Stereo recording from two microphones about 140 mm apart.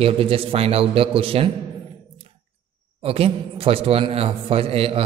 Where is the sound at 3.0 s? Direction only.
45° right (ahead or behind).